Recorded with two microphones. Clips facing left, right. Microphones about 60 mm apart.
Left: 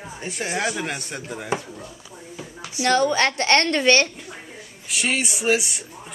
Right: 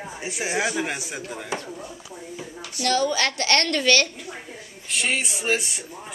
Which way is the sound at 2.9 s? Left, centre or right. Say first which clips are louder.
Left 3 dB; left.